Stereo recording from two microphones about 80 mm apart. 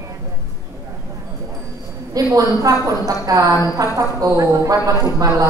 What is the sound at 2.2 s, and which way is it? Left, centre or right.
A woman's voice, right.